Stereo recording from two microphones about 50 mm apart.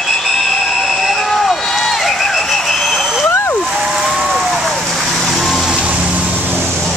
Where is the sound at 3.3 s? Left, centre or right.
Left.